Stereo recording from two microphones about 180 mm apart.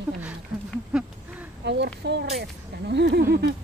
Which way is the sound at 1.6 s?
70° right (ahead or behind).